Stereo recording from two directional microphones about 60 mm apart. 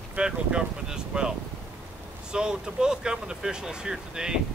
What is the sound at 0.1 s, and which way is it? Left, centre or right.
Speech, centre.